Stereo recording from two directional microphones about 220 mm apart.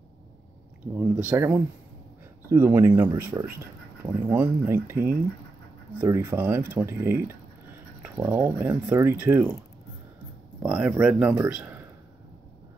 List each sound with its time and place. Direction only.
1.2 s speech: 10° right (ahead or behind)
10.6 s speech: 5° right (ahead or behind)